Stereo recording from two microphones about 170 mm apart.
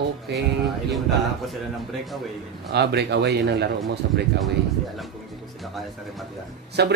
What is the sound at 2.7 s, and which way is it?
Speech, 75° right (ahead or behind).